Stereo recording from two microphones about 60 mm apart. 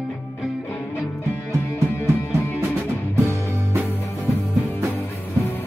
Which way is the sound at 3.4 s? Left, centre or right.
Right.